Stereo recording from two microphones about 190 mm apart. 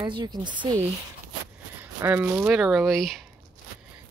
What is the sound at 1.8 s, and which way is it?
Speech, 10° right (ahead or behind).